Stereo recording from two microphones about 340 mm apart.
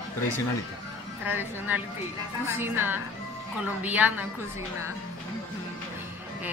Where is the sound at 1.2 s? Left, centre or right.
Centre.